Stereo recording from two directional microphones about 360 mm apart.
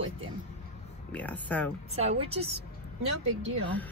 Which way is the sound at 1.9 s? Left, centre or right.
Centre.